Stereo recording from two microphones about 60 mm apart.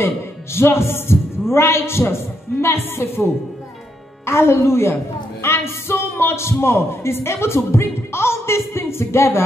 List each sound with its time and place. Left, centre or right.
0.6 s a man's voice: left
4.3 s a man's voice: left